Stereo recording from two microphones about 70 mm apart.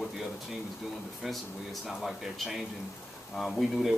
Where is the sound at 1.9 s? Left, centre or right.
Centre.